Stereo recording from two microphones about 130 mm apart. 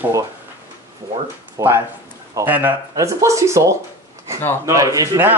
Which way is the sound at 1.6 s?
25° right (ahead or behind).